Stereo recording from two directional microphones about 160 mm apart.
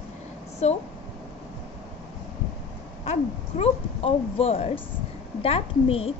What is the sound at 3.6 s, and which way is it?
Speech, 35° left (ahead or behind).